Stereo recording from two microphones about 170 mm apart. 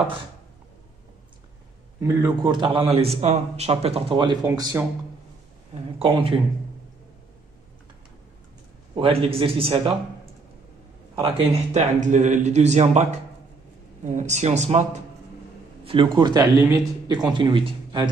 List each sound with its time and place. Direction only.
2.0 s speech: 15° right (ahead or behind)
2.5 s speech: 30° right (ahead or behind)
5.9 s speech: 35° right (ahead or behind)
8.9 s speech: 30° right (ahead or behind)
11.1 s speech: 35° right (ahead or behind)
15.8 s speech: 30° right (ahead or behind)